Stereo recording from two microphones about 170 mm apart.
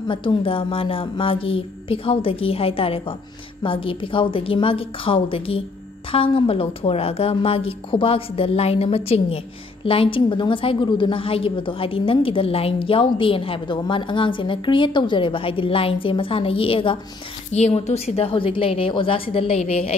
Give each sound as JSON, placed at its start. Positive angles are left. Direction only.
{"t": 0.1, "sound": "a woman's voice", "side_deg": 30}